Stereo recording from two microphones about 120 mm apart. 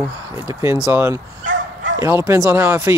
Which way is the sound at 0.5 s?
25° right (ahead or behind).